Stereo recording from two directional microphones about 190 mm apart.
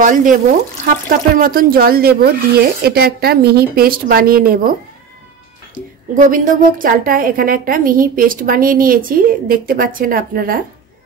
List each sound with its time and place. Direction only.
0.0 s a woman's voice: 45° right (ahead or behind)
6.1 s a woman's voice: 45° right (ahead or behind)